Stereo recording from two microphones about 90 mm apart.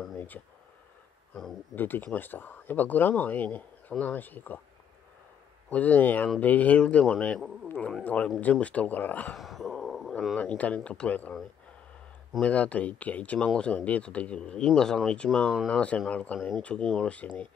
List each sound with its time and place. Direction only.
1.8 s speech: 20° left (ahead or behind)
5.7 s speech: 15° left (ahead or behind)
9.4 s a sound: centre (ahead or behind)
10.3 s speech: 15° left (ahead or behind)
12.4 s speech: 15° left (ahead or behind)